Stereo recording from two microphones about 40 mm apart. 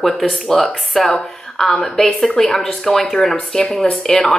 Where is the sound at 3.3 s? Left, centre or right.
Centre.